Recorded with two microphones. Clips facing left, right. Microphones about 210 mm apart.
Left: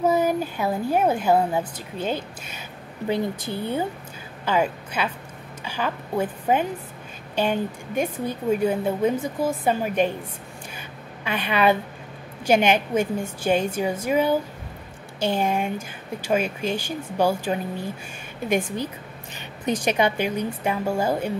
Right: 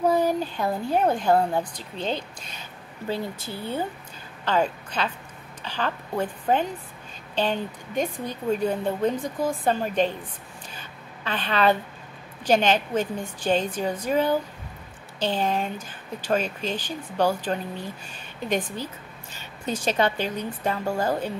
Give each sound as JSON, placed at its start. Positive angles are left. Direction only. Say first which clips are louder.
{"t": 0.0, "sound": "a woman's voice", "louder": "left 1 dB", "side_deg": 10}
{"t": 10.8, "sound": "a sound", "louder": "left 3 dB", "side_deg": 10}
{"t": 12.4, "sound": "a woman's voice", "louder": "left 2 dB", "side_deg": 10}